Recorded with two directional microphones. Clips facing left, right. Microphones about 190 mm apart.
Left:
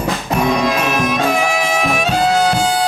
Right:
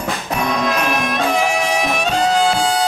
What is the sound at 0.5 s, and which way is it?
Music, 5° left (ahead or behind).